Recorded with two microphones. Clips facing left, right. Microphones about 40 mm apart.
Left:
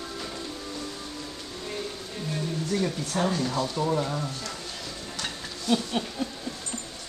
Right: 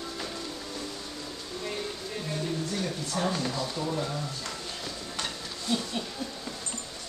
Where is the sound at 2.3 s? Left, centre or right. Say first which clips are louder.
Left 4 dB; centre.